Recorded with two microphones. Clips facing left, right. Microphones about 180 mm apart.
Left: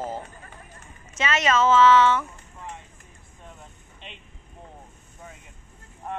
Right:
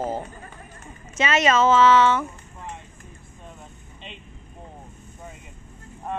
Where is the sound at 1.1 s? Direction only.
15° right (ahead or behind).